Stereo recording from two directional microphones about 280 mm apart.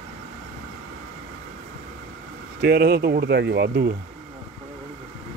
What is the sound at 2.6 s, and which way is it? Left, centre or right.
Speech, right.